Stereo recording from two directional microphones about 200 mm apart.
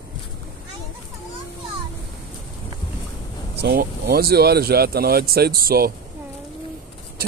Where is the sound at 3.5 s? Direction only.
55° right (ahead or behind).